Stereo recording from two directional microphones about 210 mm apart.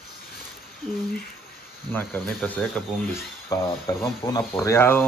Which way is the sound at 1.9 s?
5° left (ahead or behind).